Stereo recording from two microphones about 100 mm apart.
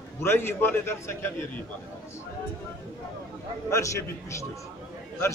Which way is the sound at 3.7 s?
30° left (ahead or behind).